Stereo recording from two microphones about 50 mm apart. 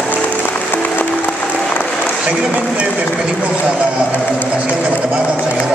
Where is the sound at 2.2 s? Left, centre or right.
Right.